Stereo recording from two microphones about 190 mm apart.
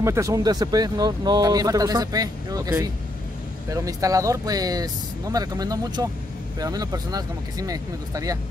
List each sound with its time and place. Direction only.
0.0 s speech: 15° right (ahead or behind)
3.7 s speech: 15° right (ahead or behind)